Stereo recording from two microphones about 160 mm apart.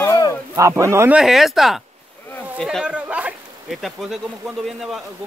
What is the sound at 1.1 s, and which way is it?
Speech, centre (ahead or behind).